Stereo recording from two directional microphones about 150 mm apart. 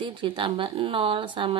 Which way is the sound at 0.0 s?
35° right (ahead or behind).